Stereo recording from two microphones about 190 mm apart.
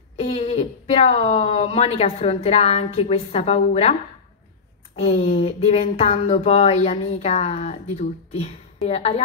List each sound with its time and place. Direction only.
0.1 s speech: 35° left (ahead or behind)
4.9 s speech: 30° left (ahead or behind)